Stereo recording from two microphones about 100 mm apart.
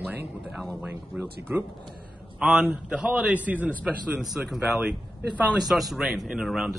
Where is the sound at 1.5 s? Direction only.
20° right (ahead or behind).